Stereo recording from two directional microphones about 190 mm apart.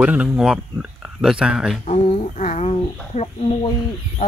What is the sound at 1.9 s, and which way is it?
Speech, 30° left (ahead or behind).